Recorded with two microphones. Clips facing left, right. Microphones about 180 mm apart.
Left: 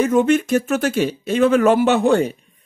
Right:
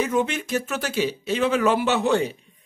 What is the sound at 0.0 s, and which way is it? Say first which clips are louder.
Speech: left 8 dB; 50° left (ahead or behind).